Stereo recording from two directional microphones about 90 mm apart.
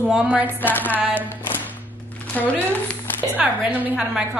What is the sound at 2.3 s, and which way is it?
Speech, 15° left (ahead or behind).